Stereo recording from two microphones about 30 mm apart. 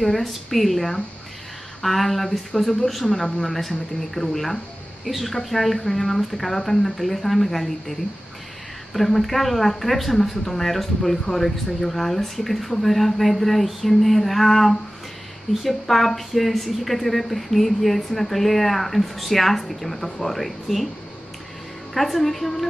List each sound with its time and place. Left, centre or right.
0.0 s speech: centre
2.2 s speech: centre
3.5 s speech: centre
5.0 s speech: centre
8.9 s speech: centre
21.9 s speech: centre